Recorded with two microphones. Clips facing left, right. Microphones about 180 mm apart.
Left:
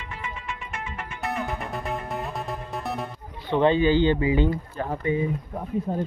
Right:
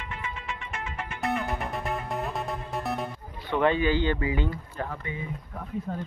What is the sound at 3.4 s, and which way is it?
Speech, 25° left (ahead or behind).